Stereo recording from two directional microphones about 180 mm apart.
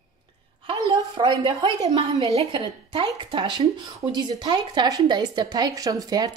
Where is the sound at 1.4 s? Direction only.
25° right (ahead or behind).